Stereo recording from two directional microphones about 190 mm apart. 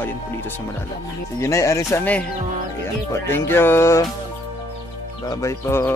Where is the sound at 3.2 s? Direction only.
10° left (ahead or behind).